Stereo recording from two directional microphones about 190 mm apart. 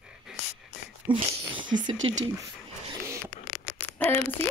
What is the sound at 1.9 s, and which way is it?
Speech, 90° right.